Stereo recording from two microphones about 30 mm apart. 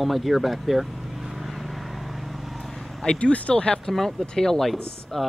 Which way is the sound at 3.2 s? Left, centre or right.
Left.